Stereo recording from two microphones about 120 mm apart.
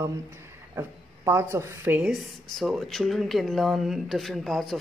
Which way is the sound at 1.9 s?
5° right (ahead or behind).